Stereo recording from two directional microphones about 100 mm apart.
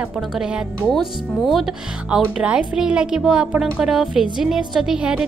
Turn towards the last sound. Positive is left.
turn(degrees=-10)  # may be behind; listen again after turning